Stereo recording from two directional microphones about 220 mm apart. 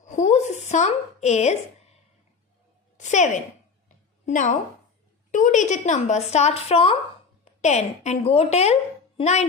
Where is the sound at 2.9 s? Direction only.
35° left (ahead or behind).